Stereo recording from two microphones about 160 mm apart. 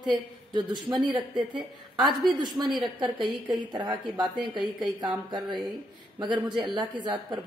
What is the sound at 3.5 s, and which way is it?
Speech, 30° right (ahead or behind).